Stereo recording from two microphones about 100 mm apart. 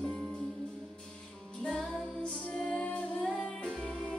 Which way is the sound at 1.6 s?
5° left (ahead or behind).